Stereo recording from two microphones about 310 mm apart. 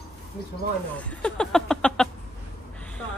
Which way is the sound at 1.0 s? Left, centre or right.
Centre.